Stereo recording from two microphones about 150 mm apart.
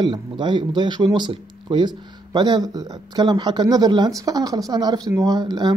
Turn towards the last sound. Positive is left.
turn(degrees=-30)  # may be behind; listen again after turning